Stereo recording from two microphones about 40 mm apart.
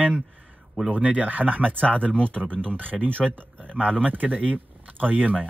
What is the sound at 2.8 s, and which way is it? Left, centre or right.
Speech, right.